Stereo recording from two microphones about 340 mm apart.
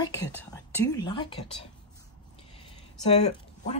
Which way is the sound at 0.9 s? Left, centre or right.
Centre.